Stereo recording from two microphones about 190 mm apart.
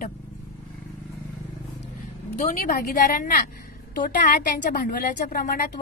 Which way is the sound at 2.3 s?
45° left (ahead or behind).